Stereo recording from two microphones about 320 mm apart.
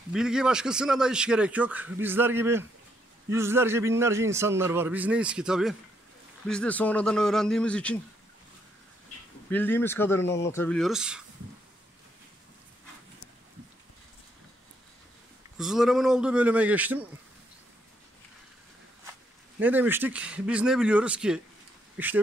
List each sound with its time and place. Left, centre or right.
0.1 s a man's voice: centre
9.5 s speech: centre
15.5 s a man's voice: centre
19.6 s a man's voice: centre